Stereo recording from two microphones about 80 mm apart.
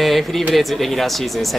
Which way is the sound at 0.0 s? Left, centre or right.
Centre.